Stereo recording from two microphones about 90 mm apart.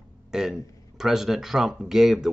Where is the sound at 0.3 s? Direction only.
5° right (ahead or behind).